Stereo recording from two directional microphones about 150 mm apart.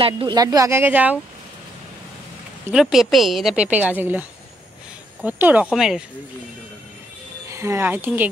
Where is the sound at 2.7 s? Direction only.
Centre (ahead or behind).